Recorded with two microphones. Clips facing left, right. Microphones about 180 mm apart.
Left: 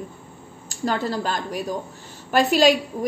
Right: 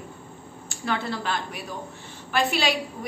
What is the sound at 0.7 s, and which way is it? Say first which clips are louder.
A woman's voice: left 4 dB; 40° left (ahead or behind).